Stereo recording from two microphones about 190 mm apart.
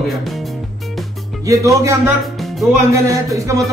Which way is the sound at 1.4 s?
15° right (ahead or behind).